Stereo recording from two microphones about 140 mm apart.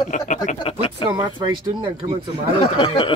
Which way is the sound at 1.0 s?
35° right (ahead or behind).